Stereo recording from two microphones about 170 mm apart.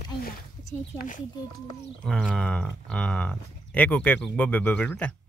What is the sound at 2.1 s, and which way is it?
Speech, 5° left (ahead or behind).